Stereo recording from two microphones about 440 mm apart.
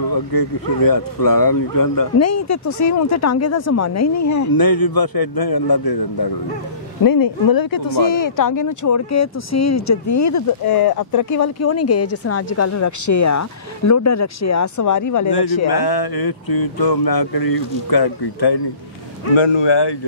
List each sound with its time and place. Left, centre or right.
0.1 s speech: left
15.7 s speech: left
19.3 s speech: left